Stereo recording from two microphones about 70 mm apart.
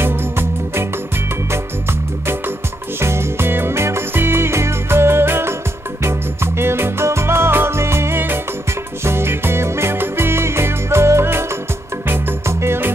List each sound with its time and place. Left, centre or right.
0.0 s music: right